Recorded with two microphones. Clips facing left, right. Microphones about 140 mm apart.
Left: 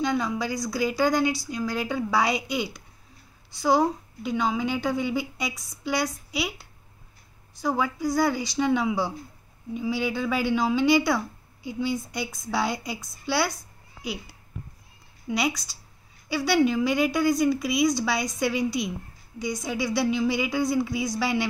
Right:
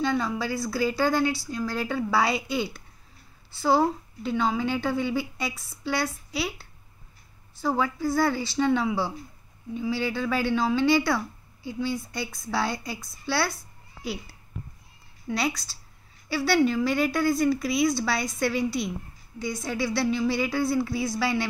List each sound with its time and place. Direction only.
0.0 s speech: 15° left (ahead or behind)
4.2 s speech: 10° left (ahead or behind)
13.3 s a sound: 15° left (ahead or behind)
15.2 s speech: 15° left (ahead or behind)